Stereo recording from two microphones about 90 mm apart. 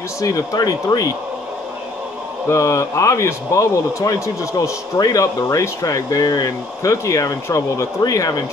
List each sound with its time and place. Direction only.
0.2 s speech: 40° left (ahead or behind)
2.4 s speech: 35° left (ahead or behind)